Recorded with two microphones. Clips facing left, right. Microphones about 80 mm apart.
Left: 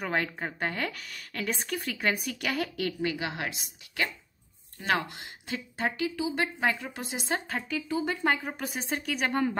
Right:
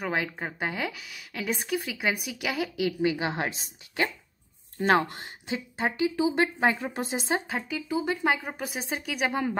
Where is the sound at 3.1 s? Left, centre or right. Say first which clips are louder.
Right 4 dB; right.